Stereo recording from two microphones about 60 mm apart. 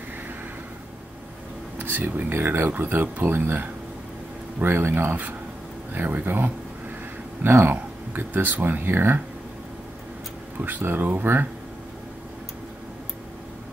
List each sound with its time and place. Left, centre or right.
1.8 s speech: right
10.6 s speech: right